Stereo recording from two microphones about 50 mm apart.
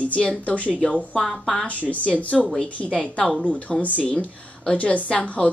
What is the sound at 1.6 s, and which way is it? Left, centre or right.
A woman's voice, left.